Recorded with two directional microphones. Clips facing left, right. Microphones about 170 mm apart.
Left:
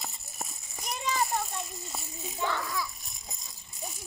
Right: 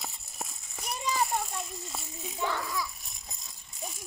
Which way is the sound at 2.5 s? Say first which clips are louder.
Left 1 dB; 5° right (ahead or behind).